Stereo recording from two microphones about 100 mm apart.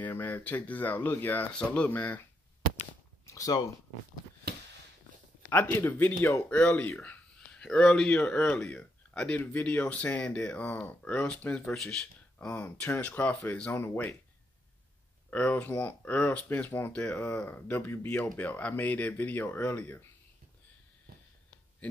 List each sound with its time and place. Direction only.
0.0 s speech: 20° left (ahead or behind)
3.3 s speech: 35° left (ahead or behind)
5.5 s speech: 20° left (ahead or behind)
7.1 s a sound: 10° left (ahead or behind)
8.2 s speech: 15° left (ahead or behind)
15.2 s speech: 15° left (ahead or behind)